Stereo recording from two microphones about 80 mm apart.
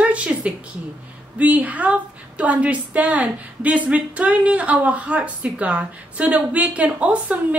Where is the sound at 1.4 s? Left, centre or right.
Centre.